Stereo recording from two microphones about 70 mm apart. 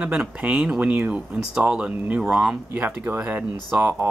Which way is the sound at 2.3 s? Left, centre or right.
Centre.